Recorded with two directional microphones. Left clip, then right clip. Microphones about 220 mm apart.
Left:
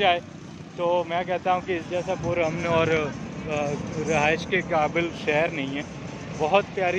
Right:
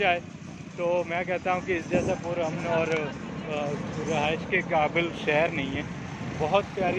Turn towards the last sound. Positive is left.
turn(degrees=25)  # may be behind; listen again after turning